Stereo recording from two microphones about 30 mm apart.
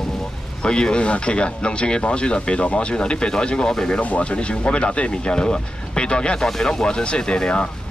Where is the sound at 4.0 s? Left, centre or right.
Left.